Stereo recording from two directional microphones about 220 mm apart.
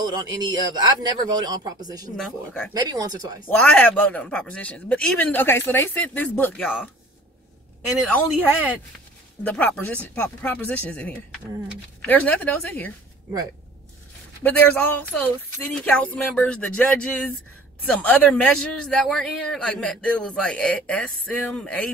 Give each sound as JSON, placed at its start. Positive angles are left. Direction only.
{"t": 0.0, "sound": "a man's voice", "side_deg": -15}
{"t": 2.1, "sound": "a man's voice", "side_deg": 5}
{"t": 2.7, "sound": "a man's voice", "side_deg": -20}
{"t": 3.4, "sound": "a man's voice", "side_deg": 5}
{"t": 9.4, "sound": "speech", "side_deg": 5}
{"t": 14.4, "sound": "a man's voice", "side_deg": 10}